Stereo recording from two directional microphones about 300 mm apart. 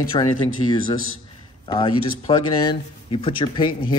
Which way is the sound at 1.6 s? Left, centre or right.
Centre.